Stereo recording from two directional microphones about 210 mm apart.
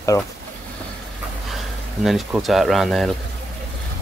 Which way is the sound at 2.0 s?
Centre (ahead or behind).